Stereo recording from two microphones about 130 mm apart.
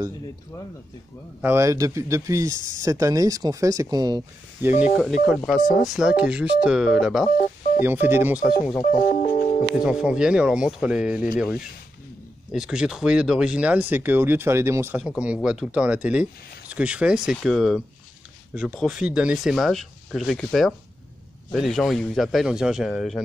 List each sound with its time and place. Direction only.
1.4 s speech: 20° right (ahead or behind)
4.6 s speech: 15° right (ahead or behind)
4.9 s speech: centre (ahead or behind)
7.8 s speech: 15° right (ahead or behind)
8.5 s speech: 5° right (ahead or behind)
9.0 s speech: 90° left
9.8 s speech: 5° right (ahead or behind)
15.0 s speech: 5° right (ahead or behind)